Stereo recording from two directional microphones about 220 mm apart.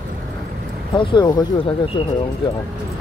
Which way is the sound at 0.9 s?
20° left (ahead or behind).